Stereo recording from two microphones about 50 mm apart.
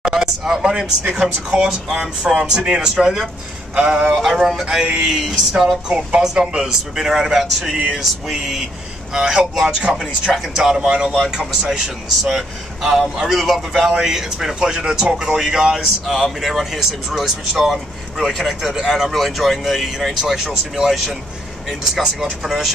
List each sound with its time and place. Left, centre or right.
0.1 s speech: centre
4.0 s speech: centre
5.9 s speech: centre